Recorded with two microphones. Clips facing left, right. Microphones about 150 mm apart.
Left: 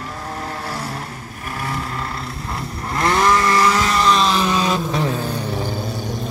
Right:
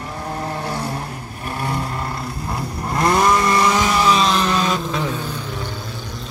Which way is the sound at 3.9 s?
5° right (ahead or behind).